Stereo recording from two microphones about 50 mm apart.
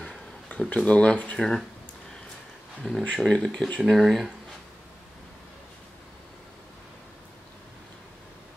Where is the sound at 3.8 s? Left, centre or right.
Centre.